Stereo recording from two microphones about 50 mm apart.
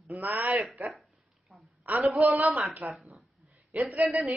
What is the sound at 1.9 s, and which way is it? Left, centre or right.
A man's voice, right.